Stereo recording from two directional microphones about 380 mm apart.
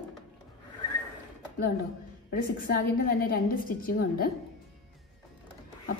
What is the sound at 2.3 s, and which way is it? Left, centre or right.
A woman's voice, left.